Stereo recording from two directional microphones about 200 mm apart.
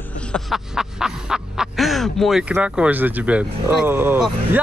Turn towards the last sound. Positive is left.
turn(degrees=-10)  # may be behind; listen again after turning